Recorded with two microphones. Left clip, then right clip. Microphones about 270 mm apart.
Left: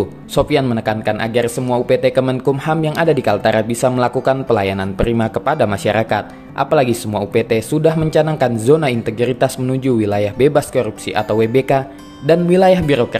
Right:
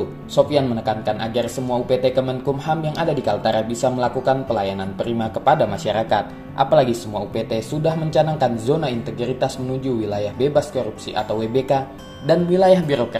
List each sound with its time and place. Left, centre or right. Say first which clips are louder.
0.4 s speech: left 2 dB; left
12.6 s a man's voice: left 1 dB; left